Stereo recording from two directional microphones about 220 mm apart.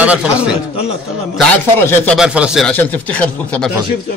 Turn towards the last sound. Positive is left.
turn(degrees=5)  # may be behind; listen again after turning